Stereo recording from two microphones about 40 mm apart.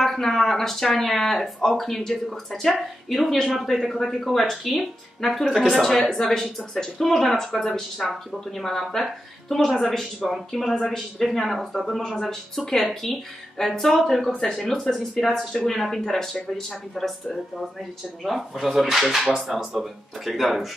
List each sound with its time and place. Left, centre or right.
0.0 s speech: centre
14.8 s speech: centre
15.2 s speech: centre